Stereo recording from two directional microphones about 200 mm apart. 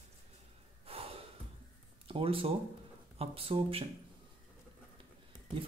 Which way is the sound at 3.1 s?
30° right (ahead or behind).